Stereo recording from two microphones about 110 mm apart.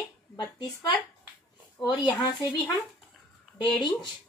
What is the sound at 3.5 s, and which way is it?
Speech, 45° left (ahead or behind).